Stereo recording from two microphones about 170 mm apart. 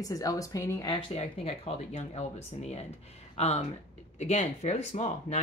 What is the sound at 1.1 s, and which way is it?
Speech, 35° left (ahead or behind).